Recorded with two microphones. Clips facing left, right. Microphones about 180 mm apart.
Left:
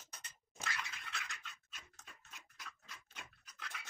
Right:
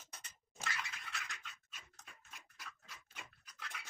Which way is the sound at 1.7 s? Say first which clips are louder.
Even; centre (ahead or behind).